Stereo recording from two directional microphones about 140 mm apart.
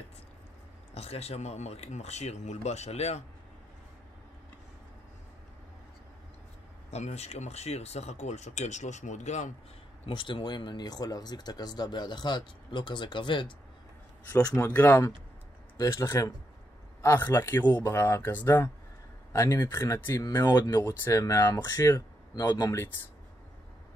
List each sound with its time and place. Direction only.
0.9 s speech: 45° left (ahead or behind)
6.9 s speech: 50° left (ahead or behind)
10.0 s speech: 35° left (ahead or behind)
14.2 s a man's voice: 10° left (ahead or behind); by 22.8 s 25° left (ahead or behind)